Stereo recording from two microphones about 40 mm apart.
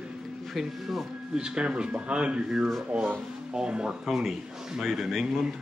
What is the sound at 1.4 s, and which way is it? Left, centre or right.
Speech, right.